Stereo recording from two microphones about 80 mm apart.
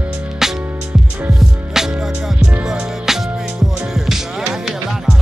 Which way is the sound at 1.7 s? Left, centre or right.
Centre.